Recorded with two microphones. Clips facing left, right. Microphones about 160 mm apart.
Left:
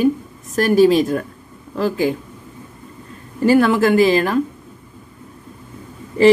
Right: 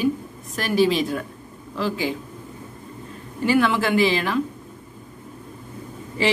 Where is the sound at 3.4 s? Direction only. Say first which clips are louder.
Left 6 dB; 45° left (ahead or behind).